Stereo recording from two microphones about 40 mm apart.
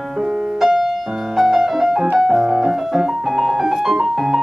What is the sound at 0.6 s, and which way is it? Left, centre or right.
Music, centre.